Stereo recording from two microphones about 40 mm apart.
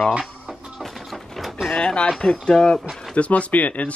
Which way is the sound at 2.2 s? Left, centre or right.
Left.